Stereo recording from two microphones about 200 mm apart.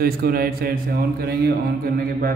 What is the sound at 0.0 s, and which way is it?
A man's voice, 50° right (ahead or behind).